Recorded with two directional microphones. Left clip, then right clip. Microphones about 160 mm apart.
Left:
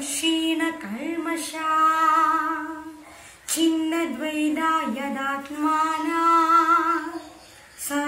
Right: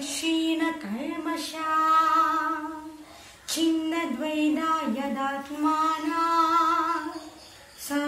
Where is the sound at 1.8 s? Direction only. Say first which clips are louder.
Left 2 dB; 10° right (ahead or behind).